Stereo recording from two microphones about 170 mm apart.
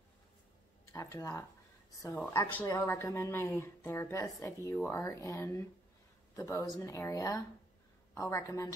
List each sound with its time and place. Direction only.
0.9 s speech: 20° left (ahead or behind)